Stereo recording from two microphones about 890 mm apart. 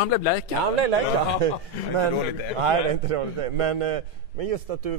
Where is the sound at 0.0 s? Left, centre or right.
Left.